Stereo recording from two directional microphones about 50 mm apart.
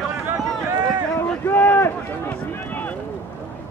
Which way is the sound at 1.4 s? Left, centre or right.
Left.